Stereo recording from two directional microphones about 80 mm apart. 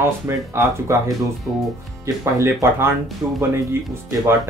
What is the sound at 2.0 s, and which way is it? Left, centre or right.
Speech, right.